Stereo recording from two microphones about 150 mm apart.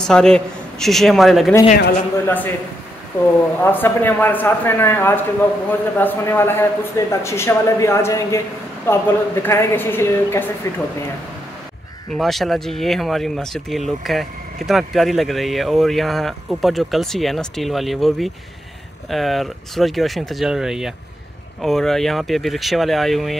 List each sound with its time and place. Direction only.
0.0 s a man's voice: 5° left (ahead or behind)
2.2 s a man's voice: 15° left (ahead or behind)
12.1 s speech: centre (ahead or behind)